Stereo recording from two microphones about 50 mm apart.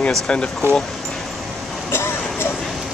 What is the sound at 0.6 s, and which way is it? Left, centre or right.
Speech, right.